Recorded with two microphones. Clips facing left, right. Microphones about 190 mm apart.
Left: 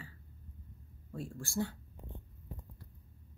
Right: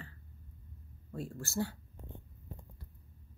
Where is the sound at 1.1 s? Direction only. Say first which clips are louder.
Even; centre (ahead or behind).